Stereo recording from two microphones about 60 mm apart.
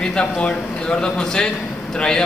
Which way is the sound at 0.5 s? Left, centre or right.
Centre.